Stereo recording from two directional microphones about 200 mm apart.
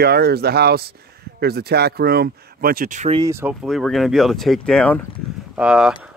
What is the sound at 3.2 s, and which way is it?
Speech, 15° right (ahead or behind).